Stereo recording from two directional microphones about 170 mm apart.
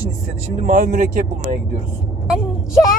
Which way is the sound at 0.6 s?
50° right (ahead or behind).